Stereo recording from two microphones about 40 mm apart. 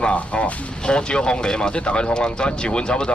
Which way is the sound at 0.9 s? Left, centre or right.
Left.